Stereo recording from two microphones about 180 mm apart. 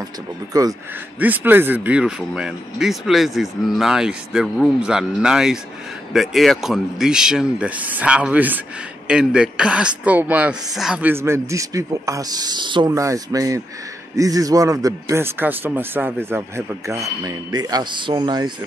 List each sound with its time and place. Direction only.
0.5 s a man's voice: 20° right (ahead or behind)
1.2 s a man's voice: 10° right (ahead or behind)